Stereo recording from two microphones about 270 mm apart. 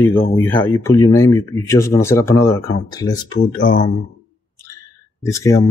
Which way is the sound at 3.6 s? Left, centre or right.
Left.